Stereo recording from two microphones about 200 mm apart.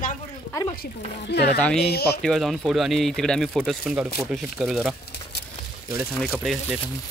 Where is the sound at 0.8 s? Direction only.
55° left (ahead or behind).